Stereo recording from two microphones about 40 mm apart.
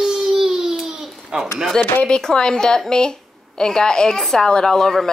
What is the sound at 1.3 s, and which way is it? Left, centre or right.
Speech, centre.